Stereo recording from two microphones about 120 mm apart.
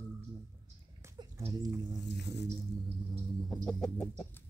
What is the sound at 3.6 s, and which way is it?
Chicken, 5° left (ahead or behind).